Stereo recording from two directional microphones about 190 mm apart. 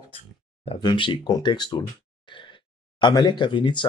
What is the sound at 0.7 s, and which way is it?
Speech, 25° left (ahead or behind).